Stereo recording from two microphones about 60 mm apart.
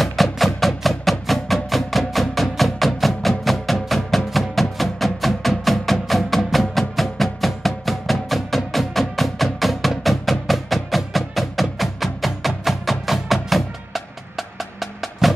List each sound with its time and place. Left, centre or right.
0.0 s music: centre